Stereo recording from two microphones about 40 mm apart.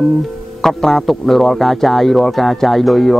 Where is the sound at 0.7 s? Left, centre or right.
Centre.